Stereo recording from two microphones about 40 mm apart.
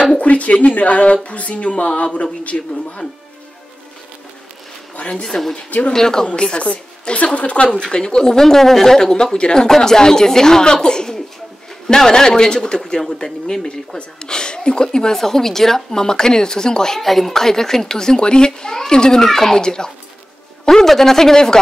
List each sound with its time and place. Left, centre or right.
0.2 s a woman's voice: left
5.1 s speech: centre
5.7 s speech: left
5.9 s a woman's voice: centre; by 7.6 s left
7.6 s a woman's voice: left